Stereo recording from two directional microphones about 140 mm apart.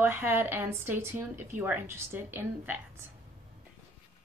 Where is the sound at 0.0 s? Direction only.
15° right (ahead or behind).